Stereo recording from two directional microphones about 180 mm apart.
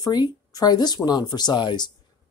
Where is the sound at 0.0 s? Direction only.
25° left (ahead or behind).